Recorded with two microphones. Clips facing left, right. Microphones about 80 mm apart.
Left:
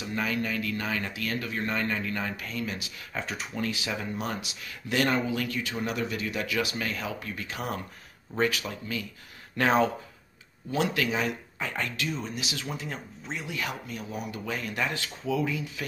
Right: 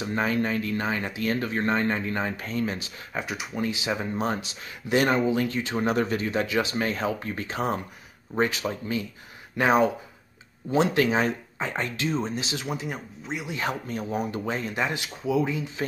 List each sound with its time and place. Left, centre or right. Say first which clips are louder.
0.0 s speech: right 5 dB; right
3.2 s speech: right 3 dB; centre
9.6 s speech: right 3 dB; centre
10.7 s speech: right 6 dB; right
12.6 s speech: right 4 dB; centre
13.6 s speech: right 5 dB; right